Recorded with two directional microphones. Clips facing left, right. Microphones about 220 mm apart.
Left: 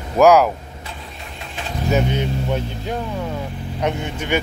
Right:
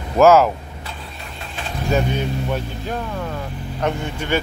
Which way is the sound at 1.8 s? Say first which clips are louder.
Left 1 dB; 20° left (ahead or behind).